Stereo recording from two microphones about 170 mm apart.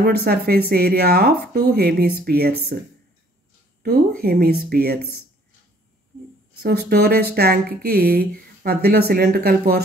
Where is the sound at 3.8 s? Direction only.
60° right (ahead or behind).